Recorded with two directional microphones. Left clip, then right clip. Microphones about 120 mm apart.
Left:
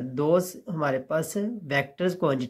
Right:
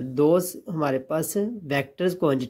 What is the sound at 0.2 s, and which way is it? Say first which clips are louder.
Speech: right 3 dB; 30° right (ahead or behind).